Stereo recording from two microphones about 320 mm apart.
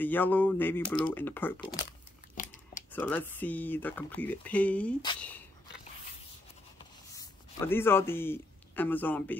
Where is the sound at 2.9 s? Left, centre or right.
Centre.